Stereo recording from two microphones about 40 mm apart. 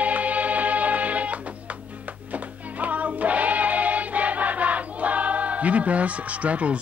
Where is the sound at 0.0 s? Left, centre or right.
Right.